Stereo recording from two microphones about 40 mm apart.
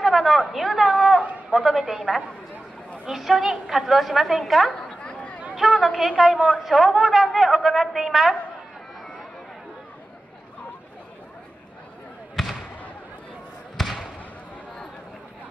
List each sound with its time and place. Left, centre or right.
0.0 s a sound: centre
1.7 s a woman's voice: centre
3.1 s a woman's voice: centre
5.0 s a sound: left
5.6 s a woman's voice: centre
12.4 s basketball bounce: centre
13.7 s basketball bounce: centre